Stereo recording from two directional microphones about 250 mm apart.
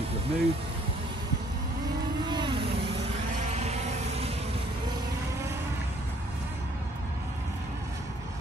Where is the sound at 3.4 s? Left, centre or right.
Right.